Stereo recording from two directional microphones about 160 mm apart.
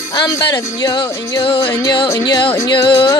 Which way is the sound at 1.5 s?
15° left (ahead or behind).